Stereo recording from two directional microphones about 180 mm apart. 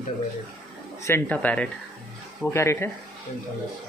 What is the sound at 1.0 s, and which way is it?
Speech, 10° left (ahead or behind).